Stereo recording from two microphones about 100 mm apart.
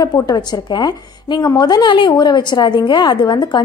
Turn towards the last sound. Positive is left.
turn(degrees=45)  # may be behind; listen again after turning